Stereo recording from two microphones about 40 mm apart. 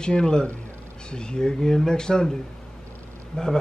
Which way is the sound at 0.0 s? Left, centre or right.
Centre.